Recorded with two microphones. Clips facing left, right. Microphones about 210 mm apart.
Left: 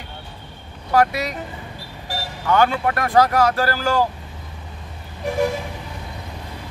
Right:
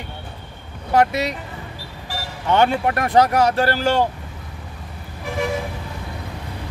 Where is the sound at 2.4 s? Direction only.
25° right (ahead or behind).